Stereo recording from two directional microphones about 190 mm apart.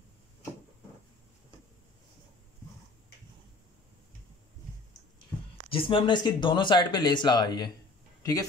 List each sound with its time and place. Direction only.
5.7 s speech: 30° left (ahead or behind)